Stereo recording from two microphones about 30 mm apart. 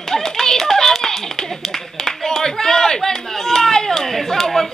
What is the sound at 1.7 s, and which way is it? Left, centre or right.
Clapping, centre.